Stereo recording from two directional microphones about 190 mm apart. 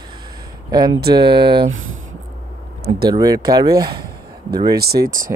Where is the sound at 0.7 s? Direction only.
20° right (ahead or behind).